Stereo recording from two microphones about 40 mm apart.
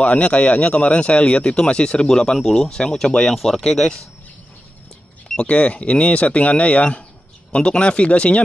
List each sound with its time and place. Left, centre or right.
0.0 s speech: left
3.3 s speech: centre
5.4 s speech: left
7.5 s speech: left